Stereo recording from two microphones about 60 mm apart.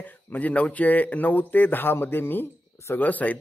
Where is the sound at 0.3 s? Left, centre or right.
Left.